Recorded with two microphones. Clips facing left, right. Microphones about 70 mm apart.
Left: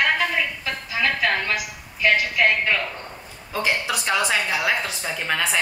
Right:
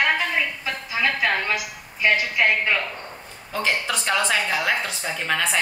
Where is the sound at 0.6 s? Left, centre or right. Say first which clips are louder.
Even; centre.